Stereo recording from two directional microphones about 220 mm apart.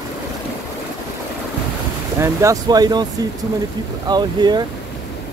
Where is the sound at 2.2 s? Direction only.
15° right (ahead or behind).